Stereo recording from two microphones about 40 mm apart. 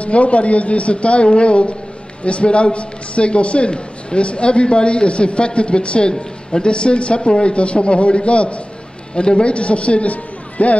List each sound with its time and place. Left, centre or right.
0.0 s a woman's voice: left